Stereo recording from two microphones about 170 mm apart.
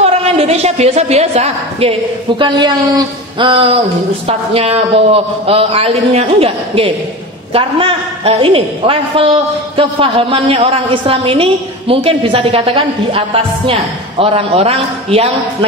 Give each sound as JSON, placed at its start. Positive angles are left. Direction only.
{"t": 0.0, "sound": "a woman's voice", "side_deg": -35}